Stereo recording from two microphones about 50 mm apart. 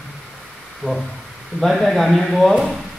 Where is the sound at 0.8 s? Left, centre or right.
Left.